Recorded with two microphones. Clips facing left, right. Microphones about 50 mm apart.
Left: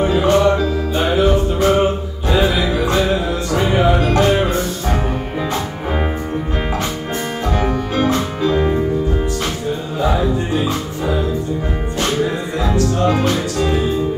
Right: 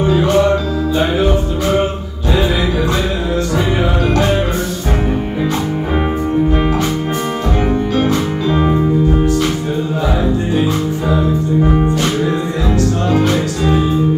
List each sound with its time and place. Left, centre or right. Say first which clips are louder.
0.0 s music: right 1 dB; left
8.5 s music: right 1 dB; right